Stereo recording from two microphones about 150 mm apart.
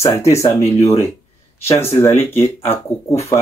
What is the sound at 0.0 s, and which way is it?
Speech, 20° left (ahead or behind).